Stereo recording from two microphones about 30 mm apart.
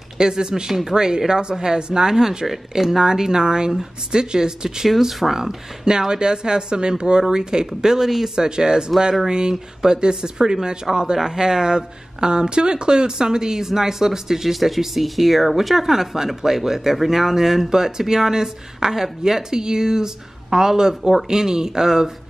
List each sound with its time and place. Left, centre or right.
0.2 s speech: right
5.2 s speech: centre
5.9 s speech: right
14.5 s speech: centre